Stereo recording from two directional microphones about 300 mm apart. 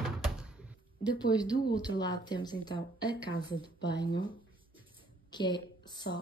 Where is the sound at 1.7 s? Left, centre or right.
Centre.